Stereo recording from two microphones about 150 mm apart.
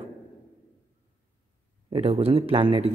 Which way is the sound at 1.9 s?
40° right (ahead or behind).